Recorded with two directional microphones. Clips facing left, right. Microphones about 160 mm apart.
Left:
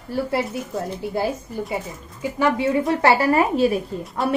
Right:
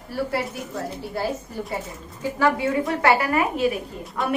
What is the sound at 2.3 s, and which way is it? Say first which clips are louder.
A woman's voice: left 2 dB; 20° left (ahead or behind).